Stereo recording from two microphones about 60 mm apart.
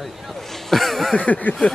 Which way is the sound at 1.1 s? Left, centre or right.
Left.